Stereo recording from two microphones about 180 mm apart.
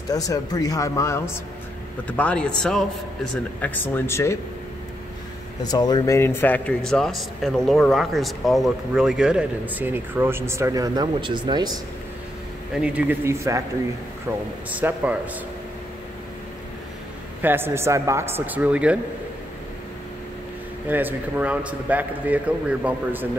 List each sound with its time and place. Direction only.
0.1 s a man's voice: 20° left (ahead or behind)
5.6 s a man's voice: 20° left (ahead or behind); by 11.8 s 25° right (ahead or behind)
12.7 s speech: 5° right (ahead or behind)
14.7 s speech: 10° right (ahead or behind)
17.4 s speech: 10° right (ahead or behind)
20.9 s speech: 10° right (ahead or behind)